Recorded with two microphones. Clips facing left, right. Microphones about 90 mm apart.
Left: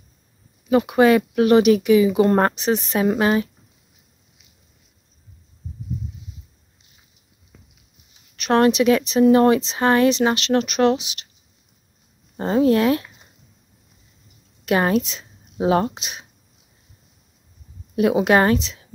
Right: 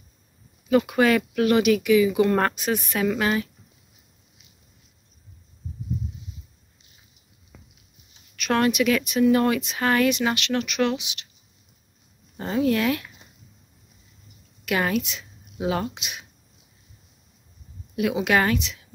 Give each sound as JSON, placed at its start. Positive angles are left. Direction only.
{"t": 0.7, "sound": "speech", "side_deg": 25}
{"t": 8.4, "sound": "speech", "side_deg": 30}
{"t": 12.4, "sound": "speech", "side_deg": 35}
{"t": 14.6, "sound": "speech", "side_deg": 35}
{"t": 17.9, "sound": "speech", "side_deg": 35}